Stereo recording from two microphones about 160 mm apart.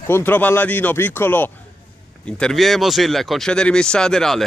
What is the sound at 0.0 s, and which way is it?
Speech, 15° left (ahead or behind).